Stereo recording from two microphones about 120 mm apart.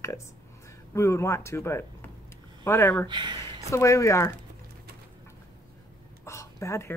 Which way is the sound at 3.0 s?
40° right (ahead or behind).